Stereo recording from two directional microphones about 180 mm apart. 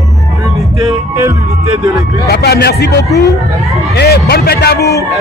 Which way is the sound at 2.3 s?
60° left (ahead or behind).